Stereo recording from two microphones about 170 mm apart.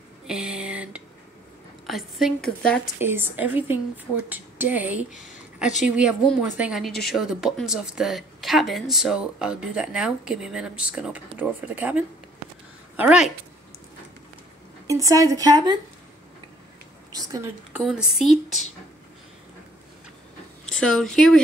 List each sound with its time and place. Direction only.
0.3 s a sound: 5° right (ahead or behind)
1.9 s a woman's voice: centre (ahead or behind)
3.0 s a woman's voice: 10° right (ahead or behind)
5.1 s speech: 50° left (ahead or behind)
5.9 s a woman's voice: 5° right (ahead or behind)
14.9 s a woman's voice: 20° right (ahead or behind)
17.1 s a woman's voice: 20° right (ahead or behind)
17.7 s a woman's voice: 5° right (ahead or behind)
20.6 s speech: 5° left (ahead or behind)